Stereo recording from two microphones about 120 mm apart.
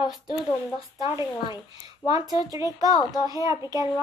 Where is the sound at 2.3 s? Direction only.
30° right (ahead or behind).